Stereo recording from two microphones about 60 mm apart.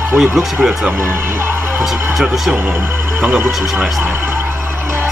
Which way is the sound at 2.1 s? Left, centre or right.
Centre.